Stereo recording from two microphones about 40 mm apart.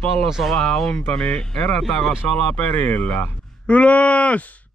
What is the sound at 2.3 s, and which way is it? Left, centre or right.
Speech, left.